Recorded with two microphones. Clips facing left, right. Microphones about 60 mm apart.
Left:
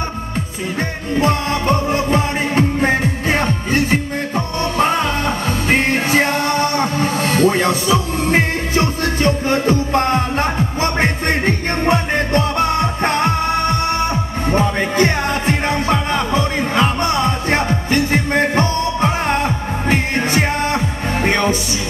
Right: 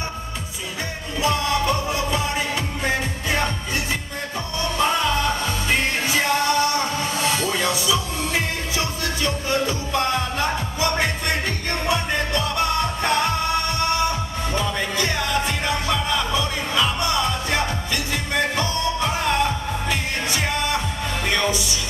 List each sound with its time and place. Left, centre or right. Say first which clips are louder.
1.2 s music: left 3 dB; left